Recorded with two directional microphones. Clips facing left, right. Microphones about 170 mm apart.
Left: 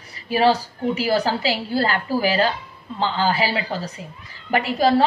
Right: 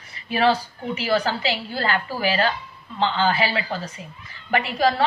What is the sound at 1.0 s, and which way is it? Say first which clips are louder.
A woman's voice: even; 35° left (ahead or behind).